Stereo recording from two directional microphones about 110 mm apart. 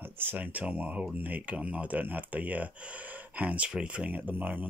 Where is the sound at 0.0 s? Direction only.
20° right (ahead or behind).